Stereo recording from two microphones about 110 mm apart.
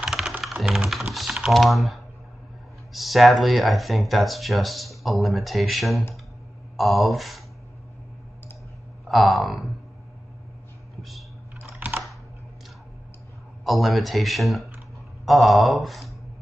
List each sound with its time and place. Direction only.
0.0 s typing: 5° right (ahead or behind)
2.9 s speech: centre (ahead or behind)
9.0 s speech: centre (ahead or behind)
11.0 s a sound: centre (ahead or behind)
11.6 s computer keyboard: 15° right (ahead or behind)
13.7 s speech: centre (ahead or behind)